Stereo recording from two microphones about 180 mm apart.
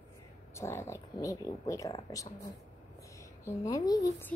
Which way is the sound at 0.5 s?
15° left (ahead or behind).